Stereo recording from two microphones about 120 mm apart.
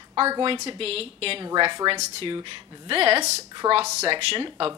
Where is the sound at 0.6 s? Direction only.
55° right (ahead or behind).